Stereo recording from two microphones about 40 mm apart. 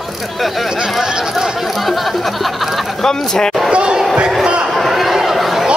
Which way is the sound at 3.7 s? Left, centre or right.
Right.